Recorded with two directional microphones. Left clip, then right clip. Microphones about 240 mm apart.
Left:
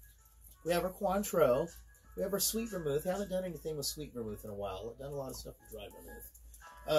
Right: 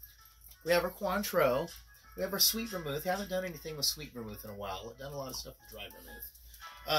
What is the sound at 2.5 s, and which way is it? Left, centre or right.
Speech, right.